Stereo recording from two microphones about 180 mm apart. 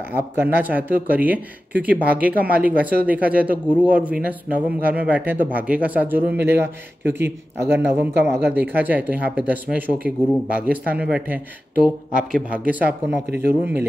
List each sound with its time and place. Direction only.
0.4 s a man's voice: 10° right (ahead or behind)
13.3 s speech: 65° right (ahead or behind)